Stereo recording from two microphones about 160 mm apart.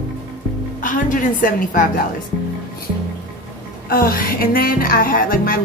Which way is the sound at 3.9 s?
65° left (ahead or behind).